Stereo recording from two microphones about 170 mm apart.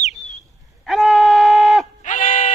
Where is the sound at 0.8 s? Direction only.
Centre (ahead or behind).